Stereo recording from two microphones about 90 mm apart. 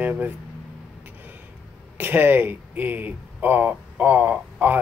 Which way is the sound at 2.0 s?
20° right (ahead or behind).